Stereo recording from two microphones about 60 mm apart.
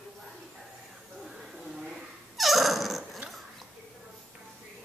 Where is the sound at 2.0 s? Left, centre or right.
Centre.